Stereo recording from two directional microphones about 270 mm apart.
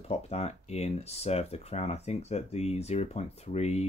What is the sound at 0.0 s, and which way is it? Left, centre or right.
Speech, left.